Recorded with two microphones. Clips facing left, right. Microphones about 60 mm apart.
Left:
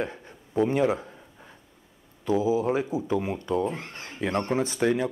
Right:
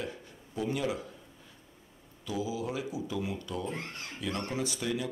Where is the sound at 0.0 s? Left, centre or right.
Left.